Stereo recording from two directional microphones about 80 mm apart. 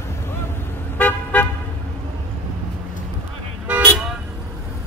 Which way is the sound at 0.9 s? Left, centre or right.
Left.